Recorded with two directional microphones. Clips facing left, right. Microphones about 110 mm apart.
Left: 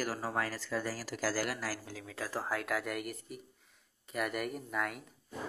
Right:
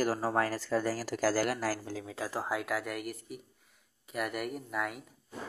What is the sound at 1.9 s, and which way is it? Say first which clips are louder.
Speech: right 3 dB; 25° right (ahead or behind).